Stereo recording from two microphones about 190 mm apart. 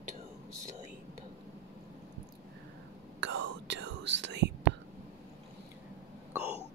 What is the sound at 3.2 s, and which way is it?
Whispering, 70° right (ahead or behind).